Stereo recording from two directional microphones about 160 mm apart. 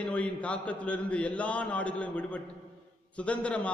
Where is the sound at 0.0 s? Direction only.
10° left (ahead or behind).